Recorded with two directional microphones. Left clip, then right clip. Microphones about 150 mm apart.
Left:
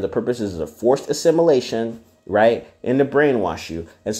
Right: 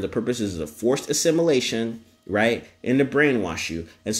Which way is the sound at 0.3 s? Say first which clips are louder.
Left 3 dB; 25° right (ahead or behind).